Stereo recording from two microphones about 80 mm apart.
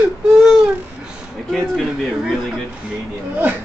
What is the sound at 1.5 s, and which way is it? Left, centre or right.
Speech, centre.